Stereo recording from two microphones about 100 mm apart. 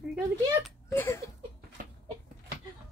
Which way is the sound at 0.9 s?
20° left (ahead or behind).